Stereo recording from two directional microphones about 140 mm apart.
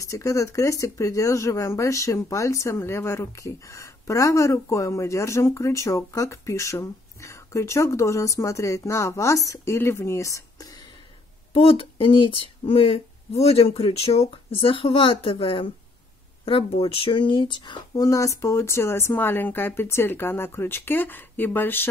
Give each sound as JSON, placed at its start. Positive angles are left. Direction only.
{"t": 0.0, "sound": "speech", "side_deg": 20}
{"t": 11.5, "sound": "speech", "side_deg": 40}